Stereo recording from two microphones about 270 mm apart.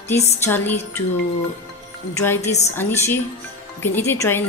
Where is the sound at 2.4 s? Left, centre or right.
Left.